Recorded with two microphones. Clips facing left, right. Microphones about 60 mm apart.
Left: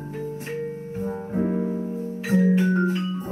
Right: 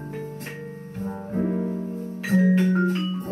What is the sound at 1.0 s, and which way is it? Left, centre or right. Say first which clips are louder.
Music: left 1 dB; centre.